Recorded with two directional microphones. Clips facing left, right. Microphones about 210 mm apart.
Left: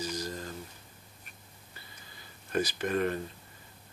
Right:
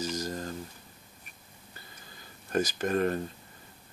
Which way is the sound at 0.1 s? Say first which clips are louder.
Right 3 dB; 45° right (ahead or behind).